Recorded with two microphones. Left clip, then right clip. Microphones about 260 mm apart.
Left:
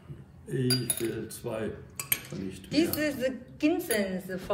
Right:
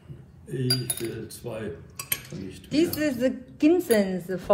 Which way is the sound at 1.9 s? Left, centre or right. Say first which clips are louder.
Even; centre.